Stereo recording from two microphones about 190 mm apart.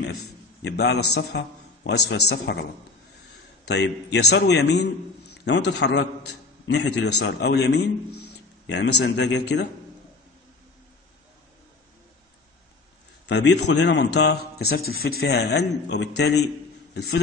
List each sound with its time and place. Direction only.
0.6 s speech: 65° left (ahead or behind)
3.6 s speech: 65° left (ahead or behind)
13.3 s speech: 65° left (ahead or behind)